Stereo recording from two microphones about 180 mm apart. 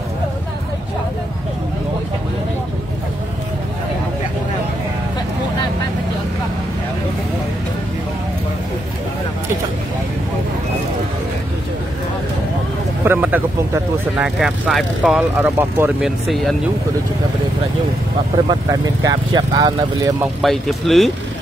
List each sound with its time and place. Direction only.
13.0 s speech: 10° right (ahead or behind)
16.0 s speech: centre (ahead or behind)
18.5 s speech: 20° right (ahead or behind)
20.4 s speech: centre (ahead or behind)